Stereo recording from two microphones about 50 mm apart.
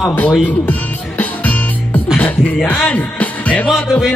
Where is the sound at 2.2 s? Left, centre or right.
Left.